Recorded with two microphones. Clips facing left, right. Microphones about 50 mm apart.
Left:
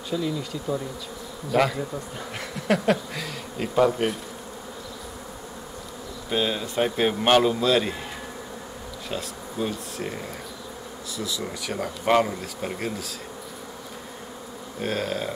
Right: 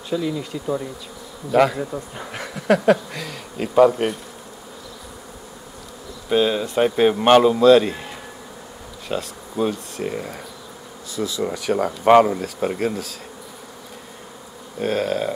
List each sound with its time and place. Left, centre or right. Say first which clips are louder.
0.1 s speech: right 4 dB; centre
6.2 s speech: right 7 dB; centre
9.1 s speech: right 6 dB; centre
14.8 s speech: right 6 dB; centre